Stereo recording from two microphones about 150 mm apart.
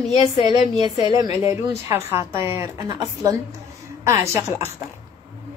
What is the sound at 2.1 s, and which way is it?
Speech, 20° right (ahead or behind).